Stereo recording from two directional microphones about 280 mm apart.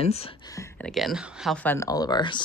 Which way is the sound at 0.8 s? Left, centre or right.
Centre.